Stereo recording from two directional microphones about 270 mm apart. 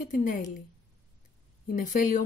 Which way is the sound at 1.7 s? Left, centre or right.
Left.